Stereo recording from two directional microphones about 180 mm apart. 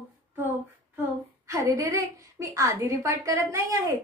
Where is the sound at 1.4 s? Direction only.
15° right (ahead or behind).